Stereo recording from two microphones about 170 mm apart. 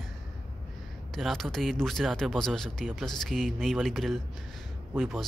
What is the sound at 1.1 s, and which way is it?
Speech, centre (ahead or behind).